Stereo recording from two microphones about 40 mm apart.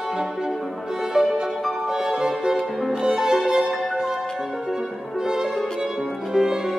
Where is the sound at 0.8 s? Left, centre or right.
Centre.